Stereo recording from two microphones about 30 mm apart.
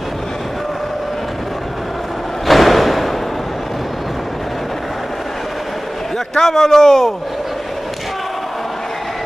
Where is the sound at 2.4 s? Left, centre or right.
Centre.